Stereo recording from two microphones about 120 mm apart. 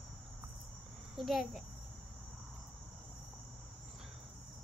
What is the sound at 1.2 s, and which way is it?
Speech, centre (ahead or behind).